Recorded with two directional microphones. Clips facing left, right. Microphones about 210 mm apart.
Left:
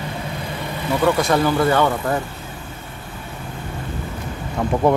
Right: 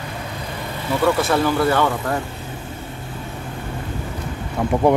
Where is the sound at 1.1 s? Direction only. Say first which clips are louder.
Left 1 dB; centre (ahead or behind).